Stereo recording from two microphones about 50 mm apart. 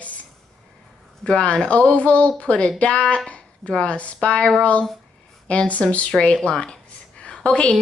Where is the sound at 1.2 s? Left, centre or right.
Left.